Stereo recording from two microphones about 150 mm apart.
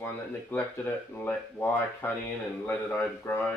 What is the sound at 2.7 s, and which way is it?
Speech, 15° left (ahead or behind).